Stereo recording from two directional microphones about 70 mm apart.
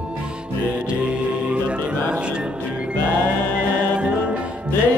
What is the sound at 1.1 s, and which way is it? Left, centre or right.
Music, centre.